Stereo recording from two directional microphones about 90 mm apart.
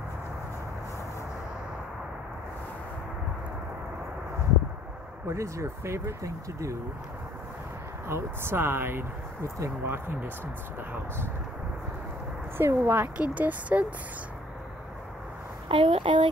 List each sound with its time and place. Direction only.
5.2 s speech: 35° right (ahead or behind)
8.1 s speech: 25° right (ahead or behind)
12.5 s speech: 25° right (ahead or behind)
15.7 s speech: 80° right